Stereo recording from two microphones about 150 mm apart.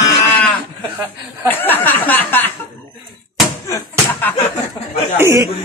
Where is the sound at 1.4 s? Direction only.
15° left (ahead or behind).